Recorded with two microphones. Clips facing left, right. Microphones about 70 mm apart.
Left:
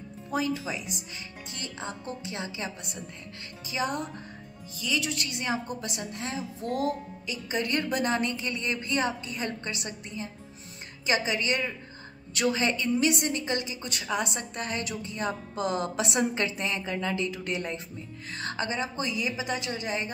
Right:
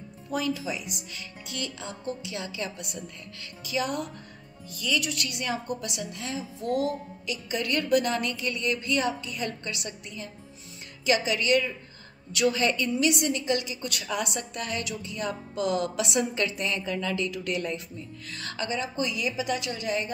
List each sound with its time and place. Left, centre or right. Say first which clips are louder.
0.3 s a woman's voice: even; left
5.1 s a woman's voice: even; left
7.2 s a woman's voice: even; left